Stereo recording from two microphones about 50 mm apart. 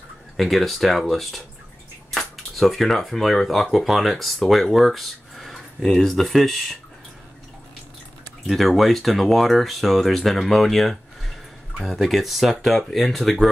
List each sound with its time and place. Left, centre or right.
0.4 s speech: centre
8.5 s speech: centre